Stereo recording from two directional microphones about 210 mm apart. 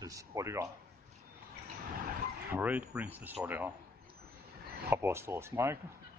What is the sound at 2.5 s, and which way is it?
Speech, 5° right (ahead or behind).